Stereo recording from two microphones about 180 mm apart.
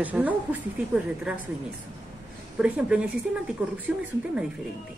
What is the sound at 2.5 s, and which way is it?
A woman's voice, 5° right (ahead or behind).